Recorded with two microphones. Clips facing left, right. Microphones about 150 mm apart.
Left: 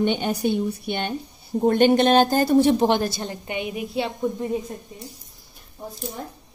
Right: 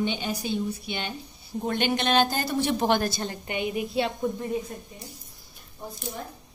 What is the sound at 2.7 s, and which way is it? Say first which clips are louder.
A woman's voice: left 4 dB; 25° left (ahead or behind).